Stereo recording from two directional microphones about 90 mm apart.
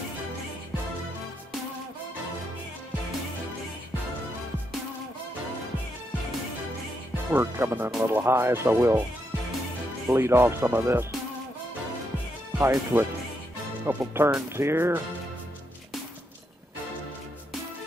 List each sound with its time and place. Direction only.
7.3 s speech: 25° right (ahead or behind)
10.0 s speech: 30° right (ahead or behind)
12.5 s speech: 25° right (ahead or behind)